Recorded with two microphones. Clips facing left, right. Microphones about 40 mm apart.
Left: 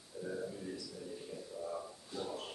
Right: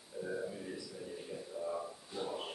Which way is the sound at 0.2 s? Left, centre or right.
Centre.